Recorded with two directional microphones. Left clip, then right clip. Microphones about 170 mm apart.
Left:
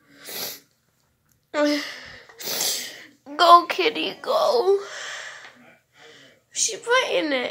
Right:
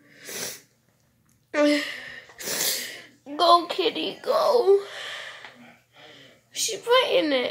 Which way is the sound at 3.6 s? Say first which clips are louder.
Left 3 dB; 30° left (ahead or behind).